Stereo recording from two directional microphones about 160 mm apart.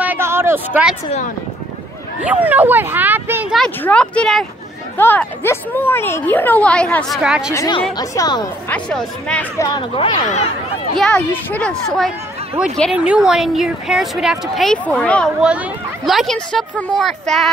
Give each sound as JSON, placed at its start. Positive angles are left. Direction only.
{"t": 0.0, "sound": "a sound", "side_deg": -15}
{"t": 2.2, "sound": "speech", "side_deg": -10}
{"t": 3.5, "sound": "a woman's voice", "side_deg": 5}
{"t": 7.5, "sound": "speech", "side_deg": 25}
{"t": 8.6, "sound": "a woman's voice", "side_deg": 5}
{"t": 9.6, "sound": "speech", "side_deg": 25}
{"t": 10.2, "sound": "speech", "side_deg": 45}
{"t": 11.0, "sound": "a woman's voice", "side_deg": 10}
{"t": 12.9, "sound": "speech", "side_deg": -5}